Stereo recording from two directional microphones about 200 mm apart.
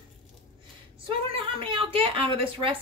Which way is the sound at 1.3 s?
25° right (ahead or behind).